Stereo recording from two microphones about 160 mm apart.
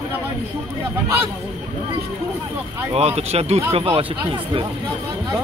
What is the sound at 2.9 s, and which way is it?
Speech, 40° right (ahead or behind).